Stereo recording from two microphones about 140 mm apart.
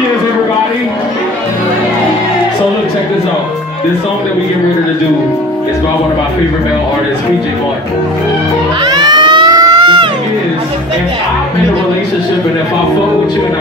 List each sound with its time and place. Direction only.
8.8 s crowd: 30° right (ahead or behind)